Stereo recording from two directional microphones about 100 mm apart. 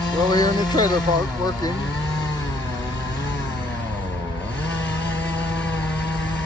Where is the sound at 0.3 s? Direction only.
40° left (ahead or behind).